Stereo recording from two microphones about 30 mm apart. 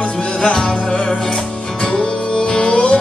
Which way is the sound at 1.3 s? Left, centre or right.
Left.